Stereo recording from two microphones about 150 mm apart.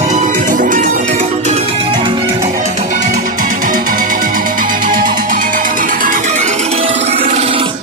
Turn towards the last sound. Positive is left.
turn(degrees=-35)  # may be behind; listen again after turning